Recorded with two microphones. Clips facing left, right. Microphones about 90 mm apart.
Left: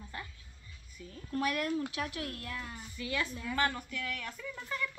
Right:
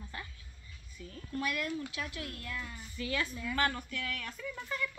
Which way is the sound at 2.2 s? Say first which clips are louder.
Left 1 dB; 40° left (ahead or behind).